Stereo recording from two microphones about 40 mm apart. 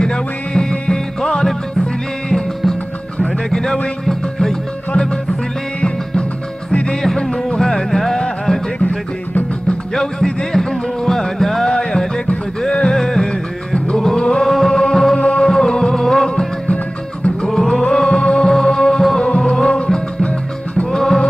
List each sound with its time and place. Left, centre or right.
0.0 s music: centre
5.8 s music: left
9.9 s music: centre
15.1 s music: left
17.5 s music: centre